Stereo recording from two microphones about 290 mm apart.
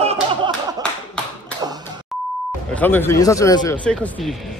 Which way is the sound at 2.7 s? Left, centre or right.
Centre.